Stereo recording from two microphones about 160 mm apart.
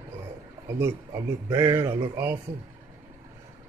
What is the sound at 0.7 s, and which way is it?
A man's voice, 20° right (ahead or behind).